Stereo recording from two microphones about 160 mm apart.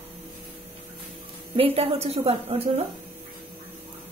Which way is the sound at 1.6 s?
40° right (ahead or behind).